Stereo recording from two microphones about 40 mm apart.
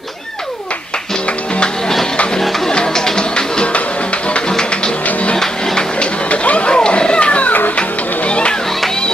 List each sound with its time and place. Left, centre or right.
2.7 s music: centre
5.9 s music: left